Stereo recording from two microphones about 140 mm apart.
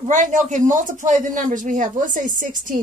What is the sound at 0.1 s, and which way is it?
A man's voice, 65° right (ahead or behind).